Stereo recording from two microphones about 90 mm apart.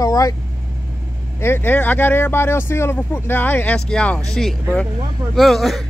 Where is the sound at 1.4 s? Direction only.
25° left (ahead or behind).